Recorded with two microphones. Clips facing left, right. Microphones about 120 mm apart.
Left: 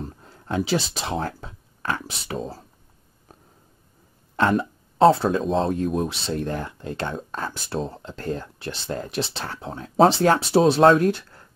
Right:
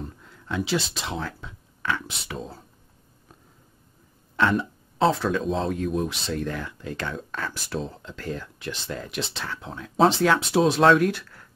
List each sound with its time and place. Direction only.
0.2 s speech: 45° left (ahead or behind)
4.4 s throat clearing: 40° left (ahead or behind)
5.1 s speech: 35° left (ahead or behind)